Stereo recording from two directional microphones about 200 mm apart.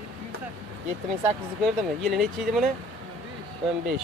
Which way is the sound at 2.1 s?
Centre (ahead or behind).